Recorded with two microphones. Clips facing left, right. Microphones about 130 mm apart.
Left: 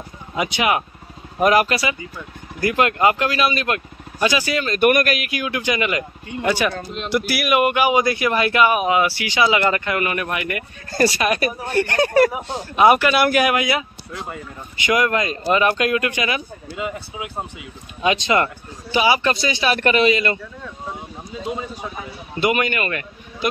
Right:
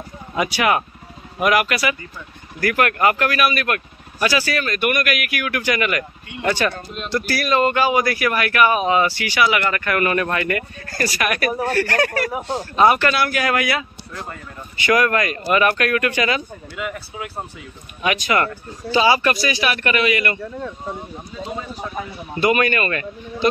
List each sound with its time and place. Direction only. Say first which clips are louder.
0.4 s speech: right 1 dB; 20° left (ahead or behind)
1.4 s speech: left 2 dB; 35° left (ahead or behind)
4.7 s speech: left 7 dB; 40° left (ahead or behind); by 12.3 s 25° left (ahead or behind)
12.3 s speech: right 3 dB; 10° left (ahead or behind)
18.0 s speech: left 1 dB; 25° left (ahead or behind)
22.4 s speech: right 2 dB; 20° left (ahead or behind)